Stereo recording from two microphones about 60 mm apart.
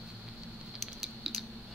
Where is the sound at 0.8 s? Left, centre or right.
Centre.